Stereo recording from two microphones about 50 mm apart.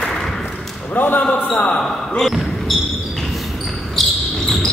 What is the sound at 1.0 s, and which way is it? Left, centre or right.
Basketball bounce, left.